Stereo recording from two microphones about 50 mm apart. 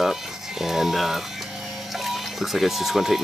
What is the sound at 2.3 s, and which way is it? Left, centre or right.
Speech, centre.